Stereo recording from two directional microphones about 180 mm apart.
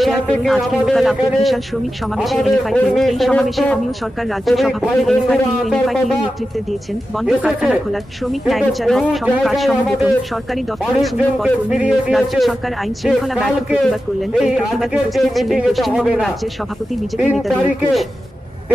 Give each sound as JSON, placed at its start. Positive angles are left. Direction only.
{"t": 0.0, "sound": "a woman's voice", "side_deg": 0}
{"t": 7.2, "sound": "a woman's voice", "side_deg": 0}